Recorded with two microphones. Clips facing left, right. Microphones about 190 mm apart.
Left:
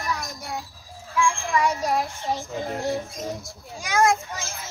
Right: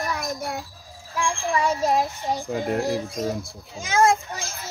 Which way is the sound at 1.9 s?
15° right (ahead or behind).